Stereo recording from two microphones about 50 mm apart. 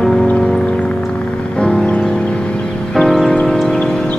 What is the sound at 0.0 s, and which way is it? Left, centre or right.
Music, centre.